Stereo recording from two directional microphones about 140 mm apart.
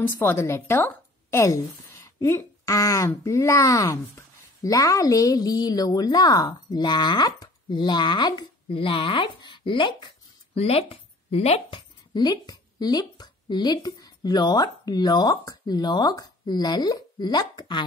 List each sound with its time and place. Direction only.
0.0 s a woman's voice: 15° left (ahead or behind); by 11.8 s 50° left (ahead or behind)
12.1 s speech: 30° left (ahead or behind)